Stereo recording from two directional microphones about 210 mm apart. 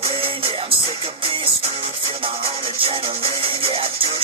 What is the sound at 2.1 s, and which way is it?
Music, 25° right (ahead or behind).